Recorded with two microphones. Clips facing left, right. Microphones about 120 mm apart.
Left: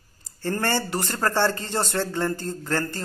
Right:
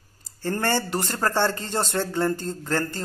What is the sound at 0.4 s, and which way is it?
Speech, 15° right (ahead or behind).